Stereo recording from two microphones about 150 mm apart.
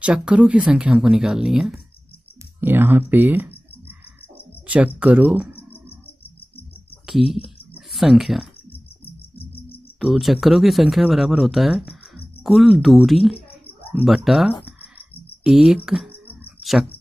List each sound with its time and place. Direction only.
0.0 s speech: 5° right (ahead or behind)
2.6 s speech: 15° right (ahead or behind)
5.9 s a sound: 40° left (ahead or behind)
7.1 s speech: 5° right (ahead or behind)
9.9 s speech: centre (ahead or behind)